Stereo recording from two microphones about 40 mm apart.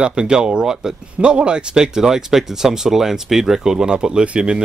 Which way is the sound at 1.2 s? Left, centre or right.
Right.